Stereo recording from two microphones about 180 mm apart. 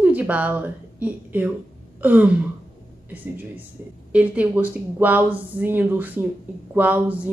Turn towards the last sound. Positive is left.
turn(degrees=-10)  # may be behind; listen again after turning